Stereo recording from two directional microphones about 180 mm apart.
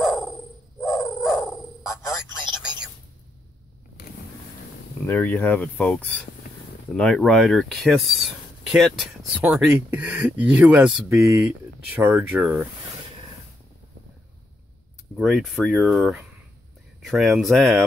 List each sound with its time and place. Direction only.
0.0 s a sound: centre (ahead or behind)
1.0 s frog: centre (ahead or behind)
5.0 s speech: 10° left (ahead or behind); by 12.6 s 5° right (ahead or behind)
15.1 s speech: centre (ahead or behind)